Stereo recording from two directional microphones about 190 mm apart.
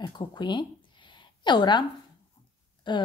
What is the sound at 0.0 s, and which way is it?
Speech, 25° left (ahead or behind).